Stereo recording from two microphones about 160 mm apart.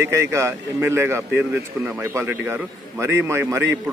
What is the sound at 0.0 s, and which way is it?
Speech, 15° right (ahead or behind).